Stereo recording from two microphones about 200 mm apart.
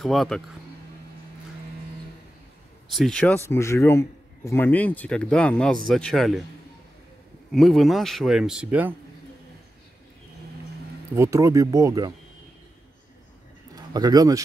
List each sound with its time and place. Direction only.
0.0 s a man's voice: centre (ahead or behind)
2.9 s a man's voice: centre (ahead or behind)
7.5 s a man's voice: centre (ahead or behind)
11.1 s speech: 15° right (ahead or behind)
13.9 s speech: 20° right (ahead or behind)